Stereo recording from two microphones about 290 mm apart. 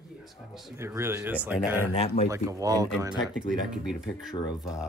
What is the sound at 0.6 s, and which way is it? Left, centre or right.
Speech, centre.